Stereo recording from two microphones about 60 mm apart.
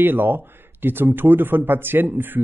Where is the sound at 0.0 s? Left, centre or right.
Right.